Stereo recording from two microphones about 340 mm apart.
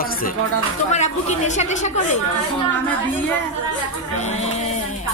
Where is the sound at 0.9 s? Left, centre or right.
Left.